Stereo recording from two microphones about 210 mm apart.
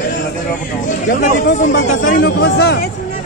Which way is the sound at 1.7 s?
60° left (ahead or behind).